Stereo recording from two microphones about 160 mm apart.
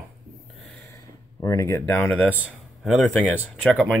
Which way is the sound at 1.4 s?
20° left (ahead or behind).